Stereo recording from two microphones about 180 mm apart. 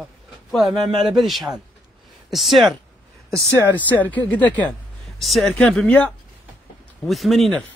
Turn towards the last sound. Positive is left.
turn(degrees=0)  # may be behind; listen again after turning